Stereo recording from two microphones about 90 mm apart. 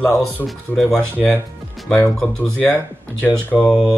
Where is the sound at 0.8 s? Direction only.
5° left (ahead or behind).